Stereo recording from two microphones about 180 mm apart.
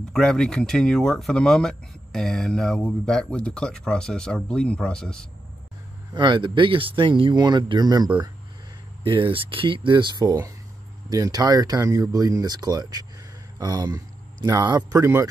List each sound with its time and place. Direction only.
0.1 s speech: 5° left (ahead or behind)
6.1 s speech: 25° right (ahead or behind)